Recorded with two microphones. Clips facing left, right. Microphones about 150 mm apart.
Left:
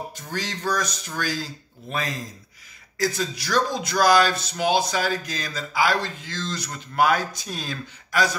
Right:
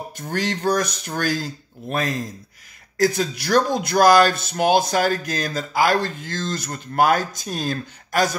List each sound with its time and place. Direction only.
0.1 s speech: 55° right (ahead or behind)